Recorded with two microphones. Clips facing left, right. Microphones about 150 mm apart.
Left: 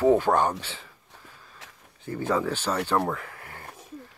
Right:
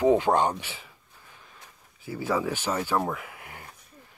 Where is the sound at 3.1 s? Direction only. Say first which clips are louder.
Left 2 dB; 15° right (ahead or behind).